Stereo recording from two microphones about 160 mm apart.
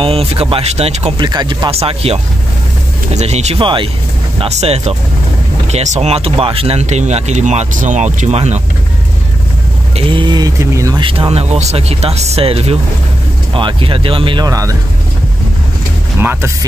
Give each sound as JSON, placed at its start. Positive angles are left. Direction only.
{"t": 0.0, "sound": "speech", "side_deg": -35}
{"t": 1.1, "sound": "speech", "side_deg": -25}
{"t": 3.2, "sound": "speech", "side_deg": -45}
{"t": 9.9, "sound": "speech", "side_deg": -30}
{"t": 11.1, "sound": "speech", "side_deg": -35}
{"t": 16.2, "sound": "speech", "side_deg": -15}